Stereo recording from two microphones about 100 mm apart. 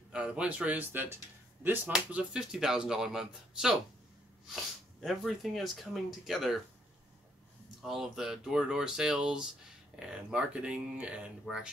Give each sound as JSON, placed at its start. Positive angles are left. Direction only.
{"t": 0.1, "sound": "speech", "side_deg": -10}
{"t": 1.9, "sound": "speech", "side_deg": -5}
{"t": 7.8, "sound": "speech", "side_deg": -5}